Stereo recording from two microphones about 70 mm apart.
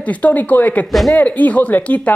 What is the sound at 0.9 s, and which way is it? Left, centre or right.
Speech, centre.